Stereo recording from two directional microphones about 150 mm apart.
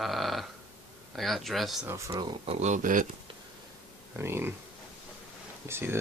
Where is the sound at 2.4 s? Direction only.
55° right (ahead or behind).